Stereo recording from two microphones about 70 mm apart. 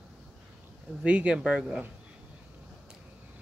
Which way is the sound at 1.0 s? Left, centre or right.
Centre.